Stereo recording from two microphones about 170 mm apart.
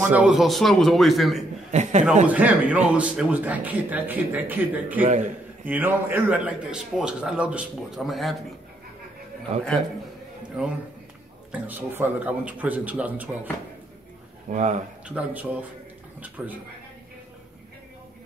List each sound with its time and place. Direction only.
0.1 s a man's voice: 5° right (ahead or behind)
1.7 s a man's voice: 45° right (ahead or behind)
2.2 s a man's voice: 10° right (ahead or behind)
5.0 s a man's voice: 45° right (ahead or behind)
5.7 s a man's voice: 10° right (ahead or behind)
11.5 s a man's voice: 10° right (ahead or behind)
14.5 s a man's voice: 45° right (ahead or behind)
15.0 s a man's voice: 10° right (ahead or behind)